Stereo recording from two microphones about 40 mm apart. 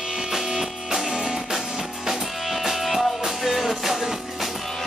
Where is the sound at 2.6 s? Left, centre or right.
Centre.